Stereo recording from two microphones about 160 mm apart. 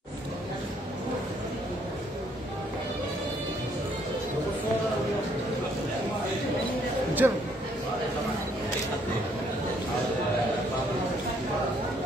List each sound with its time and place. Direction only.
7.2 s a man's voice: 15° right (ahead or behind)